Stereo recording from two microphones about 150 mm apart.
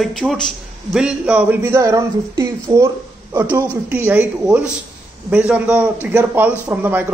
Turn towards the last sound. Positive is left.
turn(degrees=-10)  # may be behind; listen again after turning